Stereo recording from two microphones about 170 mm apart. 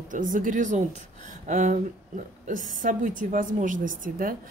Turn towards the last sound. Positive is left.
turn(degrees=-50)  # may be behind; listen again after turning